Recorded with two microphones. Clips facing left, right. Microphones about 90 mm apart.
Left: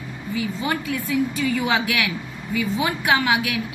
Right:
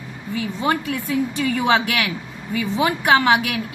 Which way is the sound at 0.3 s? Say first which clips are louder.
Right 3 dB; 60° right (ahead or behind).